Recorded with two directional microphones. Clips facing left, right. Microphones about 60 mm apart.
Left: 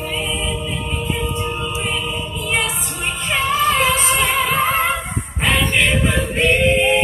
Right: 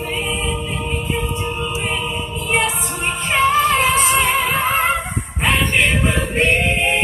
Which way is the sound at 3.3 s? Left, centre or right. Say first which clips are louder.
Right 2 dB; right.